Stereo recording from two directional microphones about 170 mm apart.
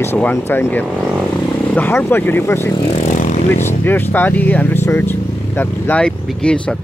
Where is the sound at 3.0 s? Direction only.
45° left (ahead or behind).